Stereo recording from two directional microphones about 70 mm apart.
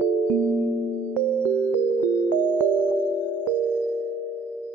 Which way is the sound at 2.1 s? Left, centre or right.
Right.